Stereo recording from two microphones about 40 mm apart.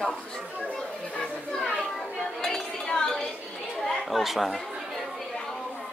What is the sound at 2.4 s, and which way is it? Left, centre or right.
Chink, centre.